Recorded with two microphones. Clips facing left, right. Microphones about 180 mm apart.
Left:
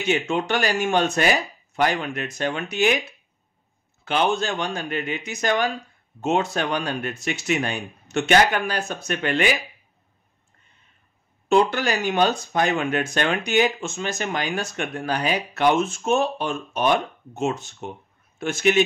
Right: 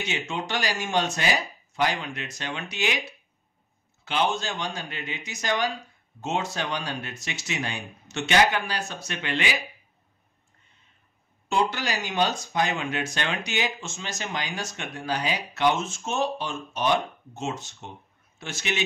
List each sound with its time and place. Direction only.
0.0 s speech: 55° left (ahead or behind)
4.0 s speech: 55° left (ahead or behind)
11.4 s speech: 60° left (ahead or behind)